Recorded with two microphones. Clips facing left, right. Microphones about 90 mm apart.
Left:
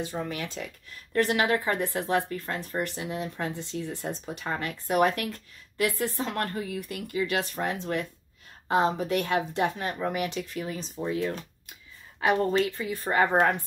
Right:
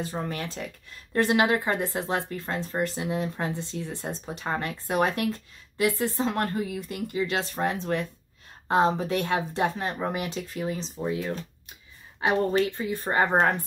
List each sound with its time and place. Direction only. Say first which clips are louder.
0.0 s speech: right 1 dB; 40° right (ahead or behind)
1.1 s speech: right 2 dB; 25° right (ahead or behind)
12.2 s speech: even; 30° right (ahead or behind)